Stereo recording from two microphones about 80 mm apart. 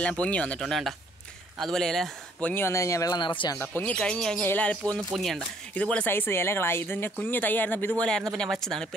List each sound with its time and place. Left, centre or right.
0.0 s speech: centre
0.7 s speech: centre
2.4 s speech: left
3.2 s speech: left
3.5 s speech: left
5.1 s speech: centre
5.8 s speech: centre
6.1 s speech: left; by 8.8 s centre